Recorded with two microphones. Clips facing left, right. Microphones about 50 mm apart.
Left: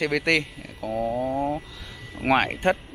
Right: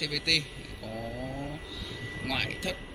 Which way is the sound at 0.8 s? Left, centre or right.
Centre.